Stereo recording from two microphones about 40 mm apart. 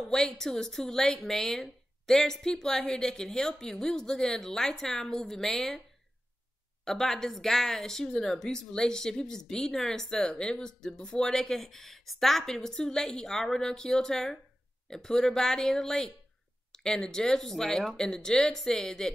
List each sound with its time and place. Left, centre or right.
0.0 s speech: centre
6.8 s speech: centre
11.3 s speech: centre
18.6 s speech: centre